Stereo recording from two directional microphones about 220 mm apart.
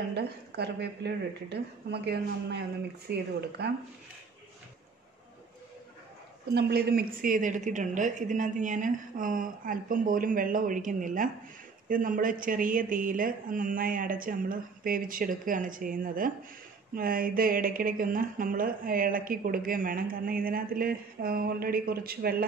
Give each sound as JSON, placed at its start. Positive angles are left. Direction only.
{"t": 0.1, "sound": "a woman's voice", "side_deg": -50}
{"t": 6.5, "sound": "speech", "side_deg": -45}